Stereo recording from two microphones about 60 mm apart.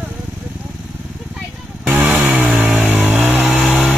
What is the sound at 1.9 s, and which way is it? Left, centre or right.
Vehicle, right.